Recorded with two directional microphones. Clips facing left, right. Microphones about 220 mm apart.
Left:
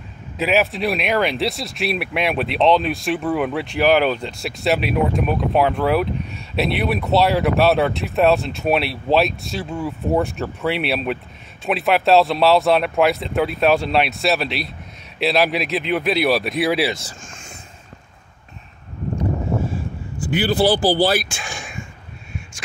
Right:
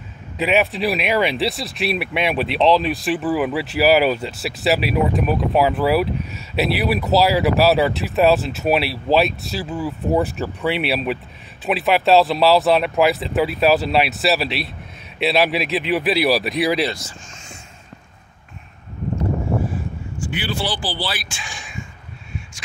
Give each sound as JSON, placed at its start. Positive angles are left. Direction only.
{"t": 0.4, "sound": "speech", "side_deg": 0}
{"t": 20.2, "sound": "speech", "side_deg": 40}